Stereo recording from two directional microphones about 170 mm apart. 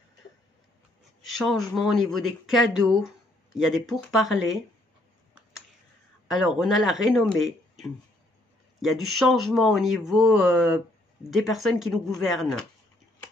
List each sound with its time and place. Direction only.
1.3 s speech: centre (ahead or behind)
6.3 s speech: 5° right (ahead or behind)